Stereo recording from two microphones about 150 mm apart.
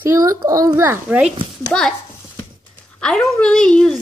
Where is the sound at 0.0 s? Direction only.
15° right (ahead or behind).